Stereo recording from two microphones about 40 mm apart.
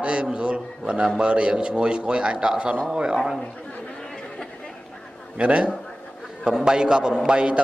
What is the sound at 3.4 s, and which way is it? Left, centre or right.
Chatter, left.